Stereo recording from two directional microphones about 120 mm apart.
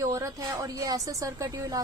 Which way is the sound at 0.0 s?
30° right (ahead or behind).